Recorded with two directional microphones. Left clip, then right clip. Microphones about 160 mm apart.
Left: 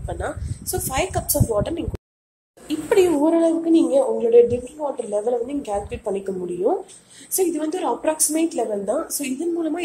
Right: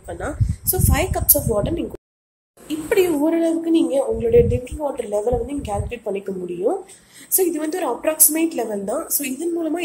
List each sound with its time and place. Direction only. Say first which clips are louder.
0.0 s a woman's voice: even; centre (ahead or behind)